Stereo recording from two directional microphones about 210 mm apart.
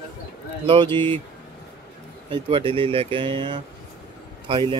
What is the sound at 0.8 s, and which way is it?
Speech, 10° left (ahead or behind).